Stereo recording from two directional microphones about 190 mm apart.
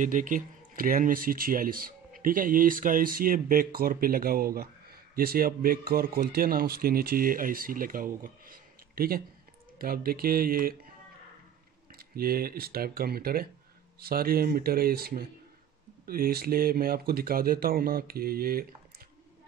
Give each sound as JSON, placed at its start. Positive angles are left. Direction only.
{"t": 0.0, "sound": "speech", "side_deg": -45}
{"t": 12.0, "sound": "speech", "side_deg": -50}